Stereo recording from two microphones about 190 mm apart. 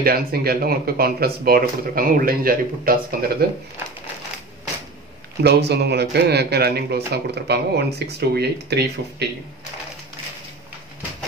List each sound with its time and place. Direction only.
0.0 s speech: 50° right (ahead or behind)
5.4 s speech: 60° right (ahead or behind)